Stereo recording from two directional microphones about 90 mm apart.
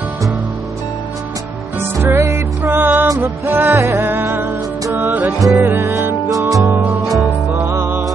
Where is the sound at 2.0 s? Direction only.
30° right (ahead or behind).